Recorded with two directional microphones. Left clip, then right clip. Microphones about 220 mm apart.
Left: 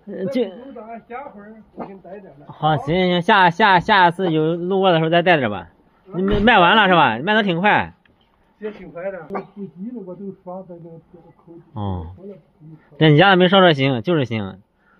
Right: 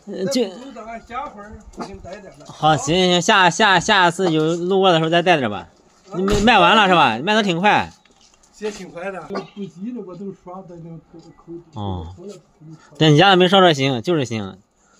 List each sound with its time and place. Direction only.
0.1 s speech: 20° right (ahead or behind)
2.4 s speech: 20° right (ahead or behind)
8.5 s speech: 70° right (ahead or behind)
10.4 s speech: 30° left (ahead or behind)
11.7 s speech: 10° right (ahead or behind)